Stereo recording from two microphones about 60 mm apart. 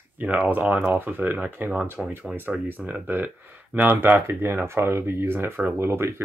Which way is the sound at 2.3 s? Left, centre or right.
Right.